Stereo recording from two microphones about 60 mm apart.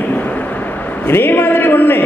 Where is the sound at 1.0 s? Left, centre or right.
Left.